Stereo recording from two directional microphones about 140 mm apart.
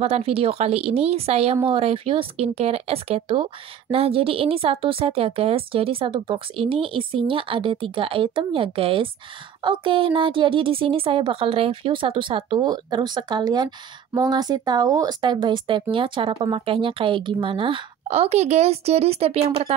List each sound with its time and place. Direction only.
0.0 s a woman's voice: 45° right (ahead or behind)